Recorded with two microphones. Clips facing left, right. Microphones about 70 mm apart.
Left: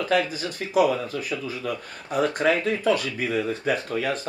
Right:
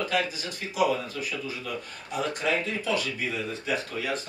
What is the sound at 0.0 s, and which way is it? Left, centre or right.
Speech, left.